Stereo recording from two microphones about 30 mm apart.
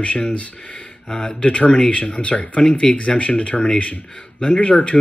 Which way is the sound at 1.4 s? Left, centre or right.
Left.